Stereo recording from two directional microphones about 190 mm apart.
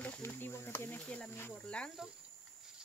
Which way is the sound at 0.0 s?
10° left (ahead or behind).